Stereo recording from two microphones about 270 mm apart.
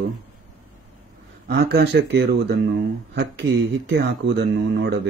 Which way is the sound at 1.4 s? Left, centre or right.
Right.